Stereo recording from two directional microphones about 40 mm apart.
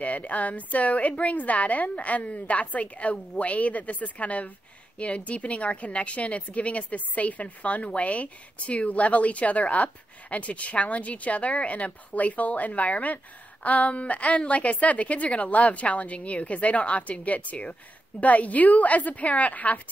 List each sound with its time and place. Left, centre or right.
0.0 s a woman's voice: left